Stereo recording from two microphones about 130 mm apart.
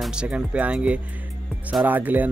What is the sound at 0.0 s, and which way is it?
Speech, 5° right (ahead or behind).